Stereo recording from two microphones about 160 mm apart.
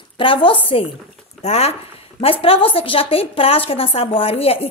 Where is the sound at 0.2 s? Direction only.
30° left (ahead or behind).